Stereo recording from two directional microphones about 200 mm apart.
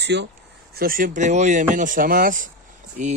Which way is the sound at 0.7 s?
45° right (ahead or behind).